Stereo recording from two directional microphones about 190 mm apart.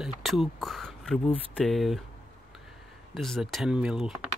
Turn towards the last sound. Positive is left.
turn(degrees=-5)  # may be behind; listen again after turning